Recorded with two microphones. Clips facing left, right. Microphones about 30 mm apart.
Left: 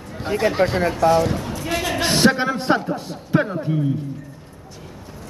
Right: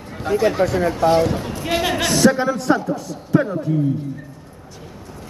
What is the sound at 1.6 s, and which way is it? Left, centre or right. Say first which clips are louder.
Speech: right 4 dB; centre.